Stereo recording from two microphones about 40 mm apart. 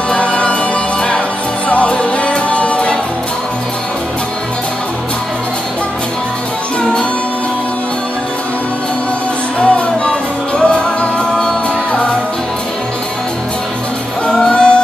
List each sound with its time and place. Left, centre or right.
0.2 s music: left
1.7 s music: left
6.8 s music: left
9.6 s music: left
14.3 s music: centre